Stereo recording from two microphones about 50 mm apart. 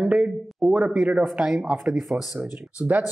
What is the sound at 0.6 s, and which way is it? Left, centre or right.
Speech, right.